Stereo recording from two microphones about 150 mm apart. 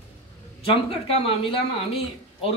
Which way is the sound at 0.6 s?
40° left (ahead or behind).